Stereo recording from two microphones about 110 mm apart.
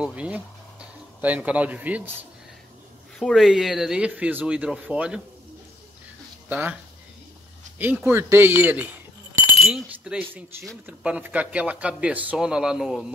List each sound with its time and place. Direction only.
0.0 s speech: 10° right (ahead or behind)
3.2 s speech: centre (ahead or behind)
6.5 s speech: 15° right (ahead or behind)
7.8 s speech: 20° right (ahead or behind)
9.6 s speech: 5° right (ahead or behind)